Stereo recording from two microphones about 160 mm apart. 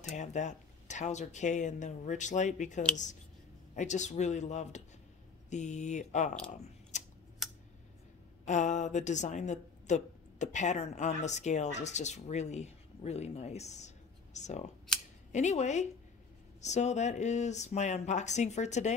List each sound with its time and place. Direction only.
0.0 s a woman's voice: 45° left (ahead or behind)
6.9 s scissors: 50° left (ahead or behind)
7.4 s a sound: centre (ahead or behind)
8.5 s a woman's voice: 50° left (ahead or behind)
14.9 s scissors: 5° left (ahead or behind)
15.3 s a woman's voice: 45° left (ahead or behind)